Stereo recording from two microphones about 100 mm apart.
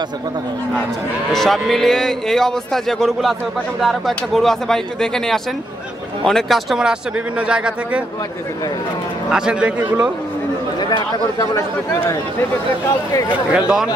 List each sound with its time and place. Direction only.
1.3 s speech: 5° left (ahead or behind)
9.3 s speech: 10° right (ahead or behind)
10.8 s speech: 45° left (ahead or behind)
13.5 s speech: 5° right (ahead or behind)